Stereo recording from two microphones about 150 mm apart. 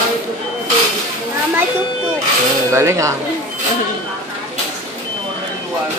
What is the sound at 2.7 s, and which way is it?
Music, 20° right (ahead or behind).